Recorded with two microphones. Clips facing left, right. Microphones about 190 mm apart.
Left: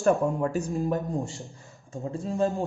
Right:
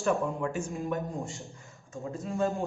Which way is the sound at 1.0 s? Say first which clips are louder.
Left 4 dB; centre (ahead or behind).